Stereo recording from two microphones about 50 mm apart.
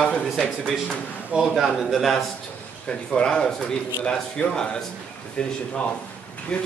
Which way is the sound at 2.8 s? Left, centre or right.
Centre.